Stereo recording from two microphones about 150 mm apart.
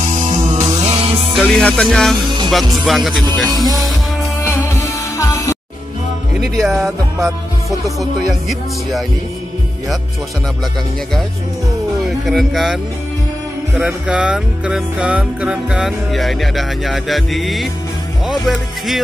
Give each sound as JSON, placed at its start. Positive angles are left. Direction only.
{"t": 0.1, "sound": "music", "side_deg": -55}
{"t": 0.7, "sound": "music", "side_deg": -25}
{"t": 0.9, "sound": "music", "side_deg": -40}
{"t": 1.3, "sound": "music", "side_deg": 5}
{"t": 3.4, "sound": "music", "side_deg": -25}
{"t": 4.4, "sound": "music", "side_deg": 15}
{"t": 6.6, "sound": "music", "side_deg": 0}
{"t": 8.0, "sound": "music", "side_deg": 0}
{"t": 12.3, "sound": "music", "side_deg": 0}
{"t": 13.7, "sound": "music", "side_deg": -5}